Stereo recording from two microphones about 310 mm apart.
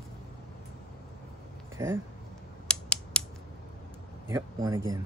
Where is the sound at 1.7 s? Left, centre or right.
Centre.